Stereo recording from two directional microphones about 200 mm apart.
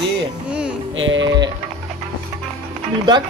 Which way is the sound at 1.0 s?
70° right (ahead or behind).